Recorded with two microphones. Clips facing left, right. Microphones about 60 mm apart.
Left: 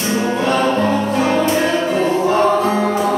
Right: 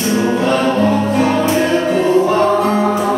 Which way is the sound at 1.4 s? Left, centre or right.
Centre.